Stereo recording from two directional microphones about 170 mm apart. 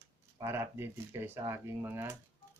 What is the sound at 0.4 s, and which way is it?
Speech, 15° right (ahead or behind).